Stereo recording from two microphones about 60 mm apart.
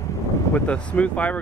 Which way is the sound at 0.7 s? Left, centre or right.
Left.